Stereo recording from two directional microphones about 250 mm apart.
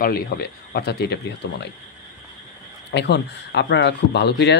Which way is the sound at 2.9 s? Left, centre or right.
Left.